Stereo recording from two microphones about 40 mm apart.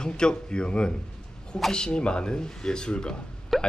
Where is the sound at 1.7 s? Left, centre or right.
Left.